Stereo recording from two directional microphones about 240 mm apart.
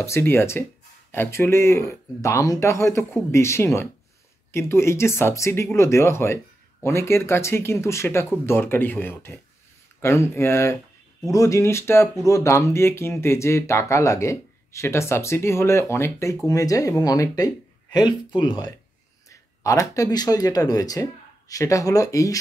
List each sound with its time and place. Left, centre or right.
0.0 s speech: centre